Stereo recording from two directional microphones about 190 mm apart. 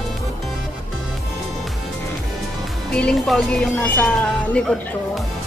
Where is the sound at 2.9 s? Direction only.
5° left (ahead or behind).